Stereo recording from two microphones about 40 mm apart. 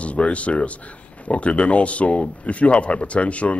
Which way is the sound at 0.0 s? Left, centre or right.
Left.